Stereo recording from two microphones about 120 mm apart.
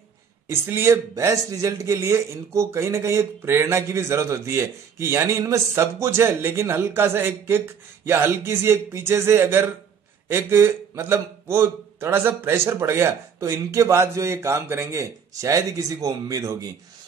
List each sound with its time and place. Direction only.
0.5 s a man's voice: 20° right (ahead or behind)